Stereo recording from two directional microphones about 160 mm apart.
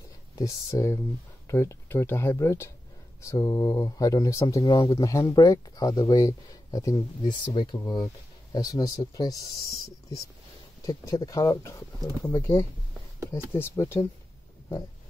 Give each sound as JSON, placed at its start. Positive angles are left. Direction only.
{"t": 0.4, "sound": "speech", "side_deg": 20}